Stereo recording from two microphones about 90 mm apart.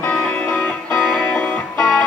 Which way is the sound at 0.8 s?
10° left (ahead or behind).